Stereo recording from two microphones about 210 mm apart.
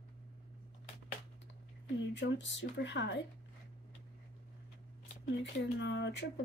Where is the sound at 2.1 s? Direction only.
60° left (ahead or behind).